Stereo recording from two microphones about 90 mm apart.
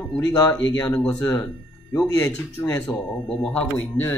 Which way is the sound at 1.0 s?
15° left (ahead or behind).